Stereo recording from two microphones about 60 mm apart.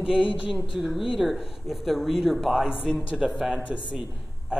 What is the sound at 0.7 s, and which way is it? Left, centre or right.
A woman's voice, centre.